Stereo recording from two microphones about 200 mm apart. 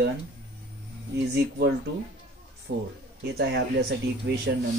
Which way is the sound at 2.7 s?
60° right (ahead or behind).